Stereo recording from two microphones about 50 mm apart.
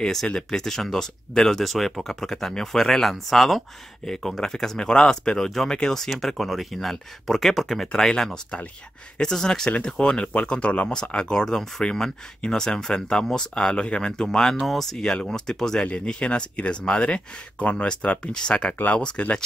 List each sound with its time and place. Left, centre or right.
0.0 s speech: centre
9.2 s speech: centre
15.9 s speech: left